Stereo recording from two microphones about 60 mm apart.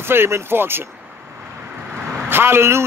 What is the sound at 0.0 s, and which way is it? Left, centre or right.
Speech, right.